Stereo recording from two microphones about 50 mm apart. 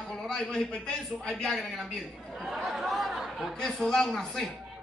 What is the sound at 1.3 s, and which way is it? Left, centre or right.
Speech, centre.